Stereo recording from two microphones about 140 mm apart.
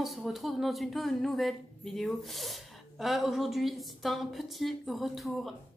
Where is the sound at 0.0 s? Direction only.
Centre (ahead or behind).